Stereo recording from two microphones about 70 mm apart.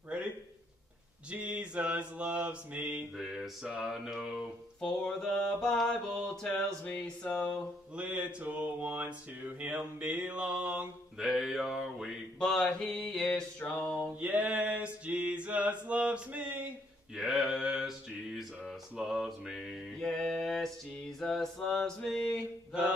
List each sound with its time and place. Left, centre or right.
1.3 s mantra: centre
3.2 s mantra: centre
4.7 s mantra: centre
7.9 s mantra: right
11.1 s a sound: centre
12.4 s mantra: centre
14.2 s a sound: right
17.1 s mantra: centre